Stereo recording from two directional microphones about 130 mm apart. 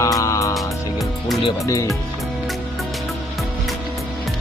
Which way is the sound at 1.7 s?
25° left (ahead or behind).